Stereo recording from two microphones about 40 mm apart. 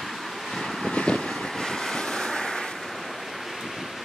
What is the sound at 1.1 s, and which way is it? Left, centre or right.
Wind noise, centre.